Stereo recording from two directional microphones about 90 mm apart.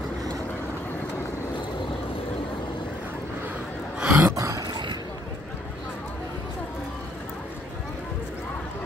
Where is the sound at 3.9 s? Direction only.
10° right (ahead or behind).